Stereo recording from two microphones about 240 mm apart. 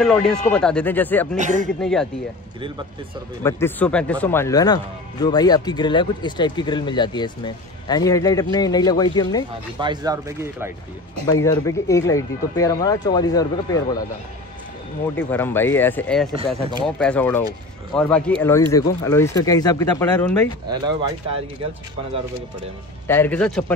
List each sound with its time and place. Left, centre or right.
0.0 s speech: centre
1.3 s speech: right
1.8 s speech: centre
3.4 s speech: centre
9.8 s speech: centre
11.4 s speech: centre
15.1 s speech: centre
20.8 s speech: right
23.0 s speech: centre